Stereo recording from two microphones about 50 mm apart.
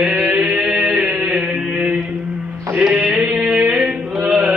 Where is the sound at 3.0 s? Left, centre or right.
Centre.